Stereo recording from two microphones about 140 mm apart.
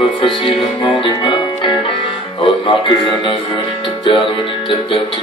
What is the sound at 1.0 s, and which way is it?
Music, 35° left (ahead or behind).